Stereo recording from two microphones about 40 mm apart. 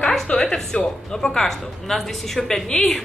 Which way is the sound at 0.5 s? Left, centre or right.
Centre.